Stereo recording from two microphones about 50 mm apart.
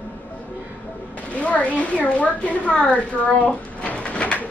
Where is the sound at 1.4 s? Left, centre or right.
Left.